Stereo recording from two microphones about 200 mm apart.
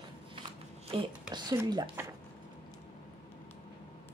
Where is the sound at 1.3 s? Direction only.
20° right (ahead or behind).